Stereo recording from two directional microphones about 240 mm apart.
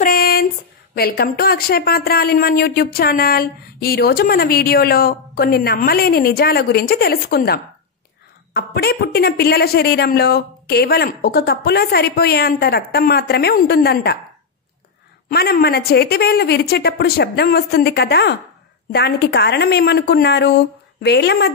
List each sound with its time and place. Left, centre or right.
0.0 s a sound: left
0.9 s speech: left
15.2 s a woman's voice: left